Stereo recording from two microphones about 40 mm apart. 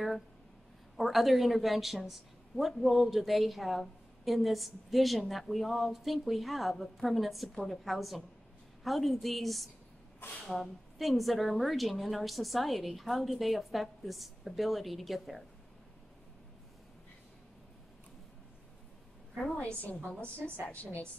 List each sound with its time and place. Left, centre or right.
0.9 s a woman's voice: centre
19.6 s a woman's voice: left